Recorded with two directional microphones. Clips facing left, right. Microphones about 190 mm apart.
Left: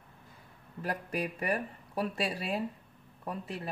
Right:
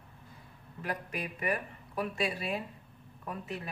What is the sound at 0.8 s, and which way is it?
Speech, 35° left (ahead or behind).